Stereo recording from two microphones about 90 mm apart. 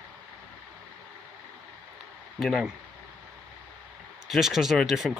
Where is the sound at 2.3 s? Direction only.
Centre (ahead or behind).